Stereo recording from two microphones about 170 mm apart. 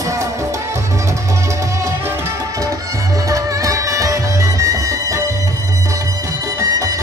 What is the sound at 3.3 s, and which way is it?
Music, 20° right (ahead or behind).